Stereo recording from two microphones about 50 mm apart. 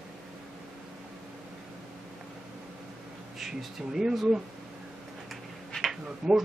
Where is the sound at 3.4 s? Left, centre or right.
Centre.